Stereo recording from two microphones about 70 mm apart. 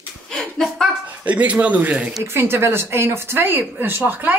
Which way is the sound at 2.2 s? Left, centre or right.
Right.